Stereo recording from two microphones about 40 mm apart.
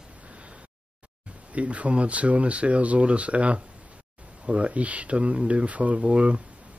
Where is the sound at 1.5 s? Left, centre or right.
Right.